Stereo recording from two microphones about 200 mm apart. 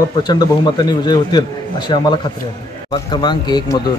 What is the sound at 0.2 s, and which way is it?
Speech, 20° left (ahead or behind).